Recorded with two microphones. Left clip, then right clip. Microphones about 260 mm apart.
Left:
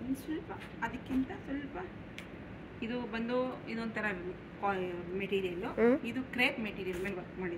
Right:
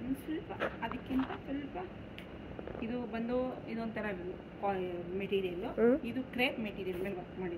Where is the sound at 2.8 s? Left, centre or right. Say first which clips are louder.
Left 2 dB; centre.